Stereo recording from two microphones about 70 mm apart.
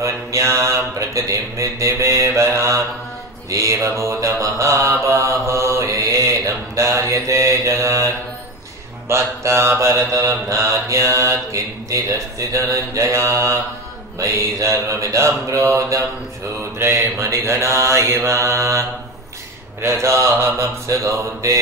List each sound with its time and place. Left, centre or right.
0.0 s mantra: right
9.1 s mantra: right